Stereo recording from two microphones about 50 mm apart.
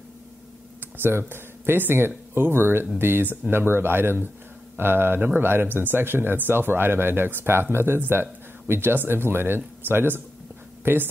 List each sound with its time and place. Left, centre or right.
0.9 s speech: right